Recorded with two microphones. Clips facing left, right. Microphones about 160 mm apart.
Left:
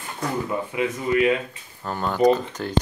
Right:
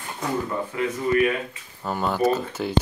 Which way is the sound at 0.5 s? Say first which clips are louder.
Left 1 dB; 15° left (ahead or behind).